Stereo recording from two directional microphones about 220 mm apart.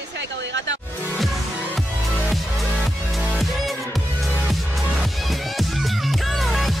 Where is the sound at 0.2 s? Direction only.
55° right (ahead or behind).